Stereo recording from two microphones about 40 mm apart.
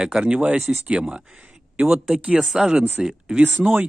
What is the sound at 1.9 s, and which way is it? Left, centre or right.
Speech, centre.